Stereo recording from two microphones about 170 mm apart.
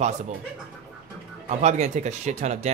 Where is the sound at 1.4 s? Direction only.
45° right (ahead or behind).